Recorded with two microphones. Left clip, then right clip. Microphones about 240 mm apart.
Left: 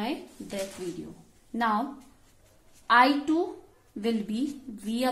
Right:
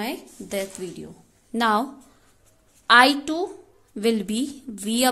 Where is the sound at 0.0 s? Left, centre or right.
Right.